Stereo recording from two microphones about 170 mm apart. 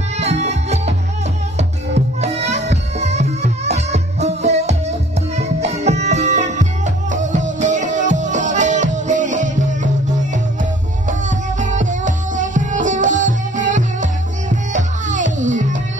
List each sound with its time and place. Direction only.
0.2 s music: 40° right (ahead or behind)
2.2 s music: 40° right (ahead or behind)